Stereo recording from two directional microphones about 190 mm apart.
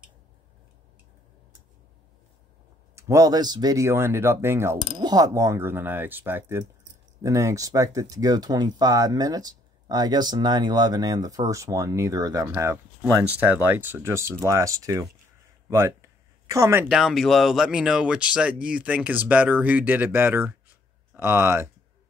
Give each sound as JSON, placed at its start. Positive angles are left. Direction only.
{"t": 3.0, "sound": "speech", "side_deg": -15}
{"t": 15.7, "sound": "a sound", "side_deg": -15}
{"t": 16.9, "sound": "speech", "side_deg": 0}